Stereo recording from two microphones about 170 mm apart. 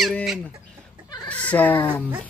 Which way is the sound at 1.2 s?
10° left (ahead or behind).